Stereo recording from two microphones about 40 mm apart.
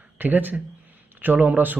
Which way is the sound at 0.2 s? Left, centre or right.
Right.